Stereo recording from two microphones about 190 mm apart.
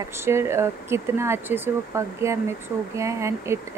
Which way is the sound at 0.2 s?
15° right (ahead or behind).